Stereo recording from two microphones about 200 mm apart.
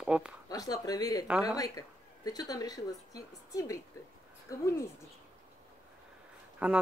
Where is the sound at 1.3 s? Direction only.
5° right (ahead or behind).